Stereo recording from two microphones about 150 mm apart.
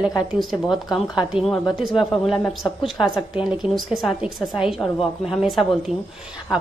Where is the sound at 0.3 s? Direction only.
Centre (ahead or behind).